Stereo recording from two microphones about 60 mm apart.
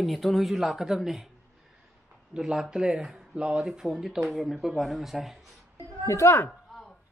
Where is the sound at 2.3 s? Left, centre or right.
Centre.